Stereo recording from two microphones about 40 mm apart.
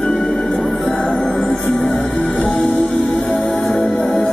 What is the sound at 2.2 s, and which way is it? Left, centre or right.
Music, left.